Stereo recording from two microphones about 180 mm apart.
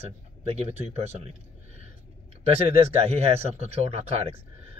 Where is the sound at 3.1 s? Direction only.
35° right (ahead or behind).